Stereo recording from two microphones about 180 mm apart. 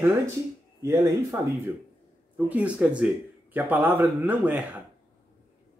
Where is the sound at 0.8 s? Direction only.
15° right (ahead or behind).